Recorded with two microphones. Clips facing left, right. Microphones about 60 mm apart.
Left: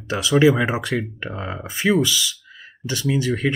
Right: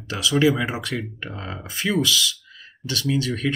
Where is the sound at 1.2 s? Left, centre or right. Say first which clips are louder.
Left 4 dB; centre.